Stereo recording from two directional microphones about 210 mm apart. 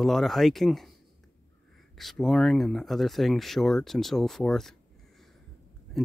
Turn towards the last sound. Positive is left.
turn(degrees=0)  # may be behind; listen again after turning